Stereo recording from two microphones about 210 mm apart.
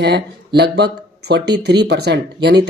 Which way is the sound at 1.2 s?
55° right (ahead or behind).